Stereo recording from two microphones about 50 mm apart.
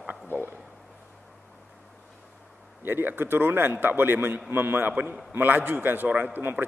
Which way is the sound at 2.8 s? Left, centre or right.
Right.